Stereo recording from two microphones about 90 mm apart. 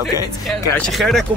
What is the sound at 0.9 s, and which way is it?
Speech, centre (ahead or behind).